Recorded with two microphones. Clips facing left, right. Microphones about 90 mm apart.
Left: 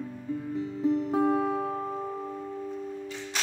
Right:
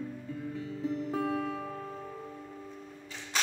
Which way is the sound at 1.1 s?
25° left (ahead or behind).